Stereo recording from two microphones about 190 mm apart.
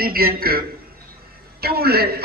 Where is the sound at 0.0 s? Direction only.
50° right (ahead or behind).